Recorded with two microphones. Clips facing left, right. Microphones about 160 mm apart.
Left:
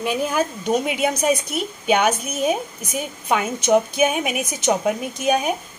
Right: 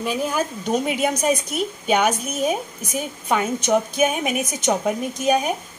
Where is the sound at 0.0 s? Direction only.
5° left (ahead or behind).